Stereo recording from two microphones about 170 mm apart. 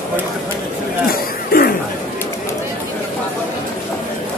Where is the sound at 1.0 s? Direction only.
60° left (ahead or behind).